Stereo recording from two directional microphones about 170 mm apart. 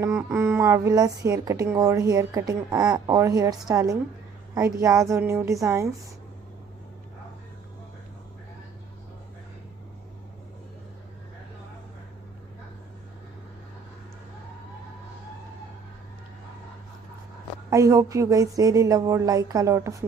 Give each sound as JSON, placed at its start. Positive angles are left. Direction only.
{"t": 0.0, "sound": "a woman's voice", "side_deg": -15}
{"t": 17.6, "sound": "a woman's voice", "side_deg": -20}